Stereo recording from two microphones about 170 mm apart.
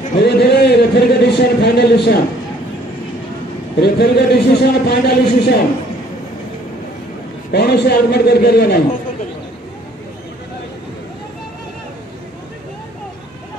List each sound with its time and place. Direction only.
0.2 s a sound: 70° left (ahead or behind)
3.8 s a man's voice: 70° left (ahead or behind)
7.5 s a man's voice: 75° left (ahead or behind)